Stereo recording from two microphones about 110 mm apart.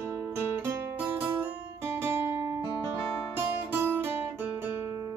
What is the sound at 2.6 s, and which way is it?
Music, 30° left (ahead or behind).